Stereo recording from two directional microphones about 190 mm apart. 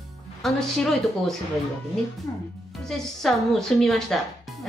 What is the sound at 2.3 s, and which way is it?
Speech, 15° left (ahead or behind).